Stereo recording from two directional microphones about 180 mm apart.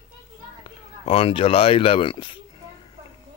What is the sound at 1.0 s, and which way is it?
Speech, 35° left (ahead or behind).